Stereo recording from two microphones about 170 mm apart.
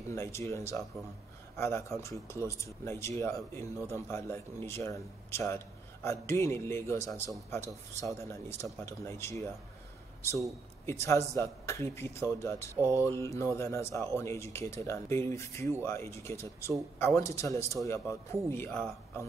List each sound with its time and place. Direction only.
0.1 s speech: 15° left (ahead or behind)
10.9 s speech: 15° left (ahead or behind)
18.7 s speech: centre (ahead or behind)